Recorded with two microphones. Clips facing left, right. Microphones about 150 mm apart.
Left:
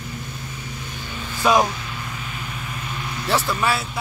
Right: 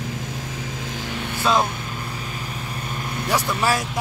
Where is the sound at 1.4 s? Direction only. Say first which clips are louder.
Left 3 dB; 15° left (ahead or behind).